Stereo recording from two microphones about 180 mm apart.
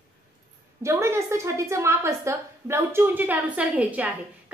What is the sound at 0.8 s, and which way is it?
A woman's voice, 15° right (ahead or behind).